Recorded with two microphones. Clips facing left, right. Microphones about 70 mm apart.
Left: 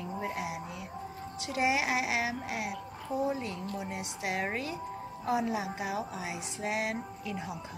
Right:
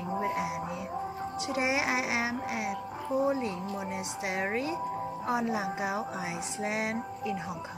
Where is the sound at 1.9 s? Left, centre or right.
Centre.